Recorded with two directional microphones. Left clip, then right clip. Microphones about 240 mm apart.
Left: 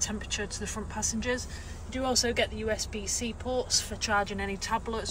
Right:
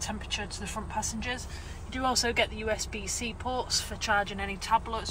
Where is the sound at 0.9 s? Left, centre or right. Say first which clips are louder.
Left 3 dB; centre.